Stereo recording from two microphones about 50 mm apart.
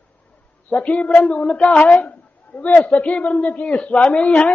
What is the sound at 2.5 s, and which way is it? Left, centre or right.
Speech, left.